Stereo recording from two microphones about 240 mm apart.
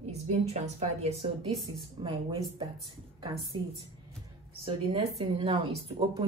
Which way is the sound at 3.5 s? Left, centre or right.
Right.